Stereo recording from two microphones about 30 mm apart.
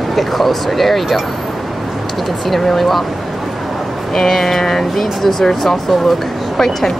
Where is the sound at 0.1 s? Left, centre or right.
Centre.